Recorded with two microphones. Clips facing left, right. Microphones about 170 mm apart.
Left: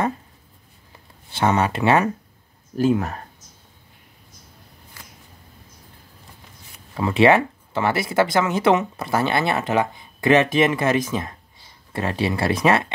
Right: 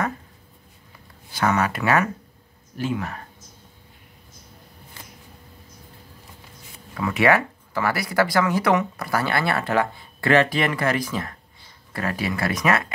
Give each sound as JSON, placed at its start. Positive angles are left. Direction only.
{"t": 1.3, "sound": "speech", "side_deg": 25}
{"t": 2.8, "sound": "speech", "side_deg": 40}
{"t": 7.0, "sound": "speech", "side_deg": 25}